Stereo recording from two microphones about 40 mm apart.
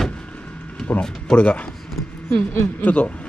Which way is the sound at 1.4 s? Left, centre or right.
Left.